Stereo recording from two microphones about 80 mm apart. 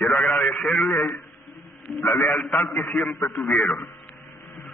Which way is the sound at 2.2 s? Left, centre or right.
Centre.